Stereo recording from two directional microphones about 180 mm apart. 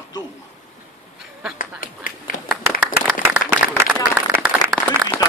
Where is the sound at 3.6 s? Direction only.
5° right (ahead or behind).